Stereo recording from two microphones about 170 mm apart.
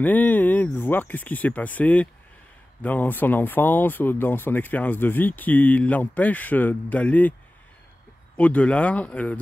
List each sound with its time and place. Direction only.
0.0 s speech: 10° left (ahead or behind)
8.4 s speech: 10° left (ahead or behind)